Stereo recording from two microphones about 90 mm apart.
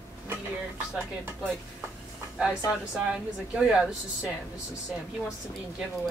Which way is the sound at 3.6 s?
10° right (ahead or behind).